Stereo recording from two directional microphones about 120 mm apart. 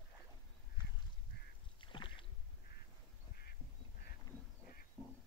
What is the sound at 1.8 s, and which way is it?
Rowboat, 45° left (ahead or behind).